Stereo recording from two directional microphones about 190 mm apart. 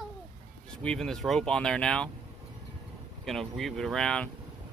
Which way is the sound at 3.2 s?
Centre (ahead or behind).